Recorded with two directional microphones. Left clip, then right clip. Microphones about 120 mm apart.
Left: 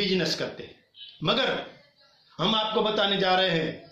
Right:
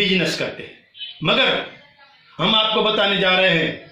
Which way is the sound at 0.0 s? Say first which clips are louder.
Right 7 dB; 15° left (ahead or behind).